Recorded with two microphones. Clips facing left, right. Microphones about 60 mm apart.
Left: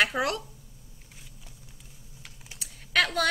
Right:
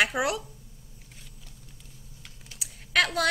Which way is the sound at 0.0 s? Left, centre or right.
Centre.